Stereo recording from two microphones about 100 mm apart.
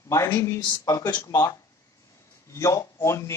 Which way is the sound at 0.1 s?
30° left (ahead or behind).